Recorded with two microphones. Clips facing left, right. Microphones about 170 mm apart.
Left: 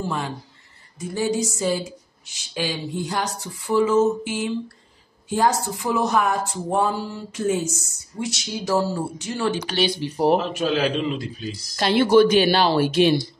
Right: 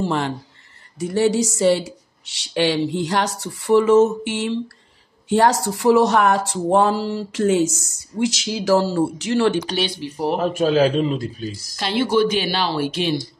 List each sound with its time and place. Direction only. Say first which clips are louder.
0.0 s speech: right 5 dB; 70° right (ahead or behind)
10.4 s a man's voice: right 6 dB; 40° right (ahead or behind)
11.7 s a woman's voice: left 4 dB; 50° left (ahead or behind)